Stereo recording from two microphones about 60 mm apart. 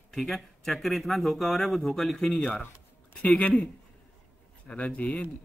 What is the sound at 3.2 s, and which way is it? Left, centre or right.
Speech, left.